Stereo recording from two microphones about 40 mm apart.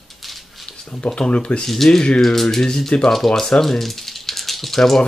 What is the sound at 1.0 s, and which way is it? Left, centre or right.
Speech, left.